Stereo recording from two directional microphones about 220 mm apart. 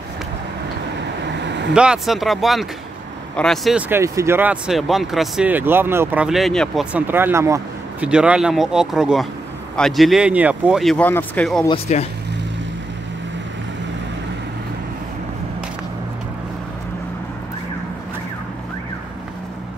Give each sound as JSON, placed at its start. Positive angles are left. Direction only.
{"t": 1.4, "sound": "vehicle", "side_deg": -55}
{"t": 1.7, "sound": "speech", "side_deg": -5}
{"t": 3.9, "sound": "speech", "side_deg": -15}
{"t": 11.6, "sound": "speech", "side_deg": 25}